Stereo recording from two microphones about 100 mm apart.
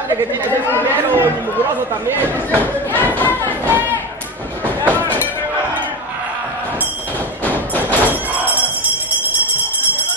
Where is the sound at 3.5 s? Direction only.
20° right (ahead or behind).